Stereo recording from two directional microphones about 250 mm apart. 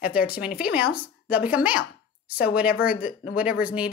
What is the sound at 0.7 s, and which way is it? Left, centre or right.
A woman's voice, centre.